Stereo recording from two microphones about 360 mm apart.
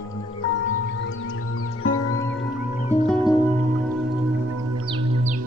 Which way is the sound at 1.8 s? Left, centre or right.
Left.